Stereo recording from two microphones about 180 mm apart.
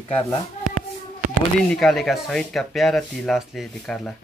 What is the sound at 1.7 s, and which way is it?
Speech, centre (ahead or behind).